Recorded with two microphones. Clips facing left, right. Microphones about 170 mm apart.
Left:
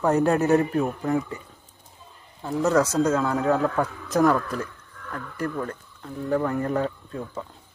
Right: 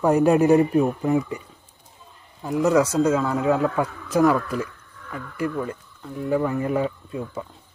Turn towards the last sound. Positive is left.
turn(degrees=-5)  # may be behind; listen again after turning